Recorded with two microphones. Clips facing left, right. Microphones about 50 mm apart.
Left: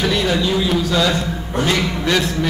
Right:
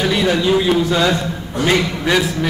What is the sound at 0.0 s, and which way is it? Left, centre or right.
A man's voice, centre.